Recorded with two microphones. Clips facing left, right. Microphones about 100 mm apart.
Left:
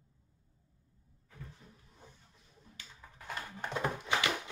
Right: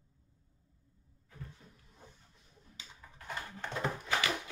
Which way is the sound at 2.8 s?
15° right (ahead or behind).